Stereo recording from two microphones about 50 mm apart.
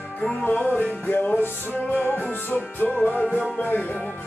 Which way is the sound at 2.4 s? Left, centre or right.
Left.